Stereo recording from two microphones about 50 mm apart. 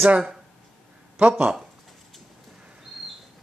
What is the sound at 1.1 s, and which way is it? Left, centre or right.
Speech, right.